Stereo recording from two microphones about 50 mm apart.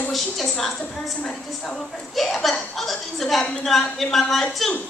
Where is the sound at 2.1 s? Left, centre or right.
Centre.